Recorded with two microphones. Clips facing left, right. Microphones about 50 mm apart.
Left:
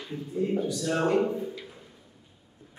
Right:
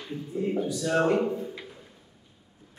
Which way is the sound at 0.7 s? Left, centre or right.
Centre.